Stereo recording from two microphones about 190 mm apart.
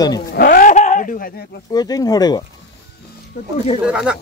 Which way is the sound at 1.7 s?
20° left (ahead or behind).